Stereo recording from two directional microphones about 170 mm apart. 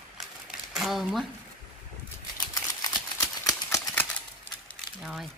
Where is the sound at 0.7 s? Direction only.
Centre (ahead or behind).